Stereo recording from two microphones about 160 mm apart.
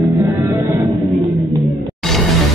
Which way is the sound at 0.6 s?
20° right (ahead or behind).